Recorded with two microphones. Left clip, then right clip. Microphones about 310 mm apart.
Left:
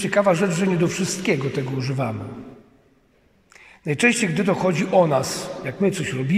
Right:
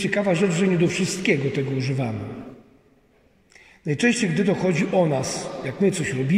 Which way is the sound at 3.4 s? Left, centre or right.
Centre.